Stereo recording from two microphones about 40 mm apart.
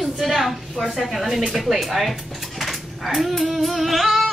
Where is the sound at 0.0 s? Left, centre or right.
Centre.